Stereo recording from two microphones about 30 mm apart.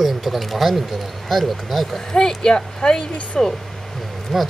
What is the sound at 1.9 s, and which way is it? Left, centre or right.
Speech, centre.